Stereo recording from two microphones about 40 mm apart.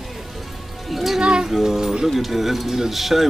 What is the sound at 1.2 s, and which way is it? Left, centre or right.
Speech, centre.